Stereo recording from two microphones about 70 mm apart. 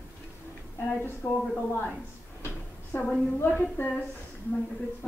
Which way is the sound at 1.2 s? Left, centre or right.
Left.